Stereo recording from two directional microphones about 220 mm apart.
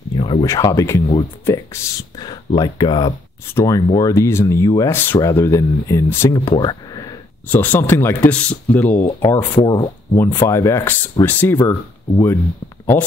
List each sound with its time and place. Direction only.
0.2 s speech: 20° left (ahead or behind)
9.2 s speech: 20° left (ahead or behind)